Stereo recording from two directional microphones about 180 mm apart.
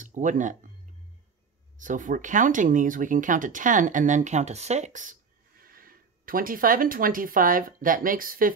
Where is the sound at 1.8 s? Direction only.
45° right (ahead or behind).